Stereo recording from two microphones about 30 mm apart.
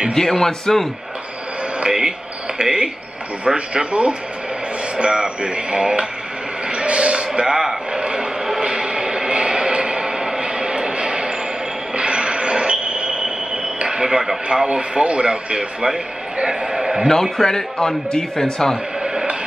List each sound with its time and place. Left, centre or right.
0.1 s speech: centre
1.9 s a sound: right
2.6 s a man's voice: right
6.7 s a sound: right
10.0 s music: right
10.4 s music: right
11.9 s a sound: right
14.7 s a man's voice: right
16.4 s a man's voice: centre
17.1 s a man's voice: centre